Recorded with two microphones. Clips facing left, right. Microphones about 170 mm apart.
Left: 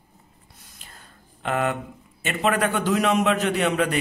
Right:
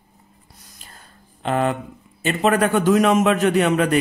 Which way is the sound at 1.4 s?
30° right (ahead or behind).